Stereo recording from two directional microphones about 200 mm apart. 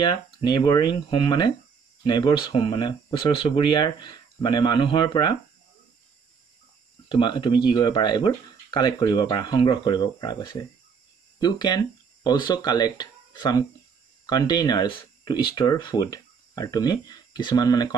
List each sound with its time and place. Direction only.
0.0 s speech: 20° left (ahead or behind)
7.1 s speech: 25° left (ahead or behind)